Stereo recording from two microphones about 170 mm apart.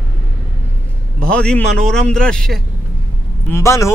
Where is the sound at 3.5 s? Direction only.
15° left (ahead or behind).